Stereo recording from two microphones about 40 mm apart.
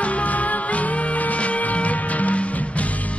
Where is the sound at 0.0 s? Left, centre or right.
Left.